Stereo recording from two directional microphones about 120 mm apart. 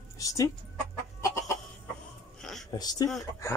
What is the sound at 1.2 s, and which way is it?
Chicken, 25° left (ahead or behind).